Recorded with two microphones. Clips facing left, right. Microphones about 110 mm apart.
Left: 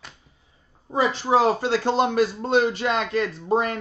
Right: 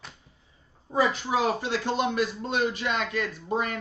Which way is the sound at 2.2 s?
35° left (ahead or behind).